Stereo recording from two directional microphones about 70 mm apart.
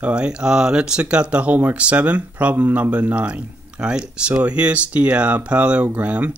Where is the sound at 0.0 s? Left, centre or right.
Centre.